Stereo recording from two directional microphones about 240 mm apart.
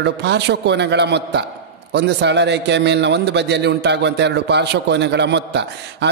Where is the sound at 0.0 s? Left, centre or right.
Right.